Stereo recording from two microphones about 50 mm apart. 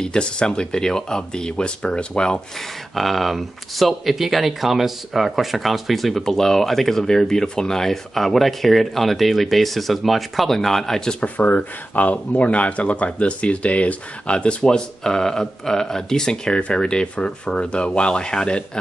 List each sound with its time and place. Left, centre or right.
0.0 s speech: centre
2.9 s speech: centre
11.2 s speech: left